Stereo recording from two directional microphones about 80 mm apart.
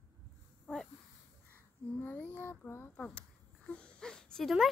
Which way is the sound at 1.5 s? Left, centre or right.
Left.